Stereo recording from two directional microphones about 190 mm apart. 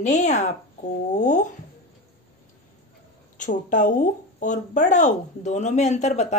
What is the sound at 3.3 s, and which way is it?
Speech, 40° left (ahead or behind).